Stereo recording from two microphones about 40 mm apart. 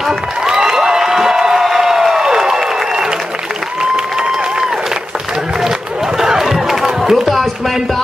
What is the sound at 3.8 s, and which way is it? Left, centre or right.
Applause, centre.